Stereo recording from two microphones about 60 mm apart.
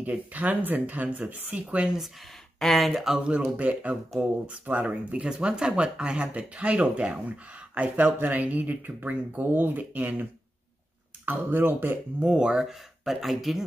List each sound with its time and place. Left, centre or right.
0.0 s speech: right
2.6 s speech: centre
3.5 s speech: right
11.2 s speech: right
12.2 s speech: centre